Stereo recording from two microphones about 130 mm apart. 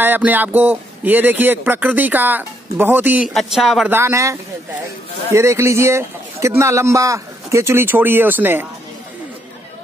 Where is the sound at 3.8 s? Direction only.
20° right (ahead or behind).